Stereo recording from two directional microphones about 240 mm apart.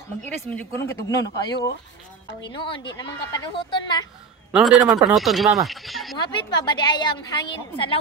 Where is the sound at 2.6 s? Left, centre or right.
Centre.